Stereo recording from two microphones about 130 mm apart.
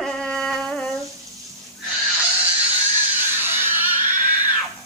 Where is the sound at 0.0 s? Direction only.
5° left (ahead or behind).